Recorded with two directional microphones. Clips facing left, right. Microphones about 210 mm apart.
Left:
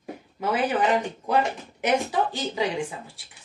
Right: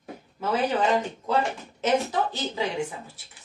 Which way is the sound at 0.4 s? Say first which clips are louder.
Left 1 dB; 15° left (ahead or behind).